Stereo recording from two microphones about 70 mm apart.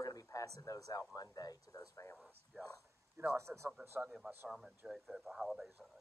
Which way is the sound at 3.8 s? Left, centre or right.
Right.